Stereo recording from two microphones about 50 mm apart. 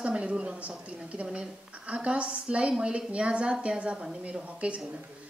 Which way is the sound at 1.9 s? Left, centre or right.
Right.